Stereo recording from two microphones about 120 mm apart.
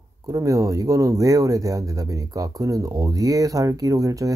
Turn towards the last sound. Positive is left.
turn(degrees=-30)  # may be behind; listen again after turning